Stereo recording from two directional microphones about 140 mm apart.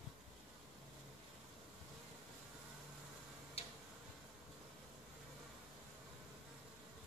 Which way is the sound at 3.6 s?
45° left (ahead or behind).